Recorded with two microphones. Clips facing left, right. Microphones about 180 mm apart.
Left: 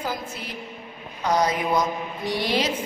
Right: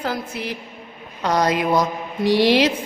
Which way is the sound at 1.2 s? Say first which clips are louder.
Right 3 dB; 80° right.